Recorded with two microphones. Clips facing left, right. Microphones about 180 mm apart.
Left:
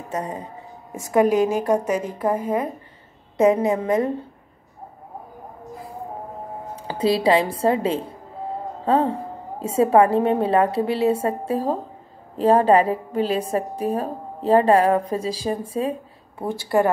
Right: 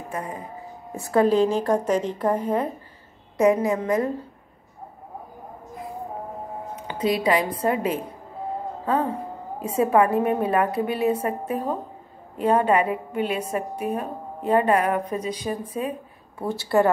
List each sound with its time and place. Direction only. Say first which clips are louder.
0.1 s a woman's voice: left 4 dB; 25° left (ahead or behind)
1.1 s a woman's voice: left 1 dB; 15° left (ahead or behind)
3.3 s a woman's voice: left 2 dB; 25° left (ahead or behind)
6.7 s a woman's voice: left 3 dB; 30° left (ahead or behind)
16.4 s a woman's voice: even; 10° left (ahead or behind)